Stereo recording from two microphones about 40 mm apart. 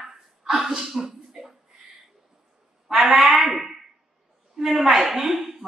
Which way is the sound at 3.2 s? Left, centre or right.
Centre.